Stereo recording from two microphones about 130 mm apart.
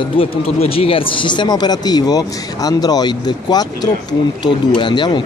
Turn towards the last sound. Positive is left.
turn(degrees=35)  # may be behind; listen again after turning